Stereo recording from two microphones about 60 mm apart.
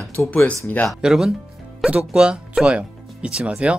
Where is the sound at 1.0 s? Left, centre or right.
Centre.